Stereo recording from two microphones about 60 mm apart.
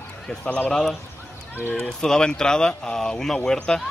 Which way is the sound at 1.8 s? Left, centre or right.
Centre.